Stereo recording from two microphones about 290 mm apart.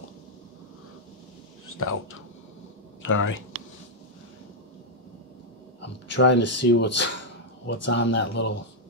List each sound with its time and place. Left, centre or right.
1.7 s speech: left
3.0 s speech: left
5.8 s speech: left